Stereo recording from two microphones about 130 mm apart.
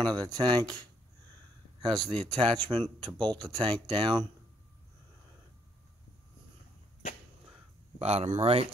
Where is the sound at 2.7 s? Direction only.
25° right (ahead or behind).